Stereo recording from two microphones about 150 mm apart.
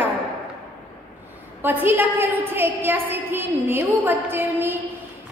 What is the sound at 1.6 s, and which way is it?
A woman's voice, 15° right (ahead or behind).